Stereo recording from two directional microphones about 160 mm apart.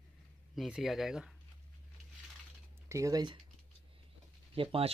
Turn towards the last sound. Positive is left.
turn(degrees=-35)  # may be behind; listen again after turning